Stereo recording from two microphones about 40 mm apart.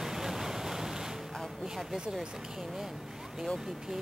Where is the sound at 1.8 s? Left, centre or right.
Centre.